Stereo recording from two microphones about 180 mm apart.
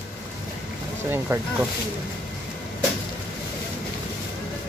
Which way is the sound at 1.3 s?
15° right (ahead or behind).